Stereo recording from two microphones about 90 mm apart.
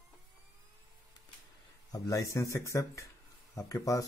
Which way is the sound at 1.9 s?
40° left (ahead or behind).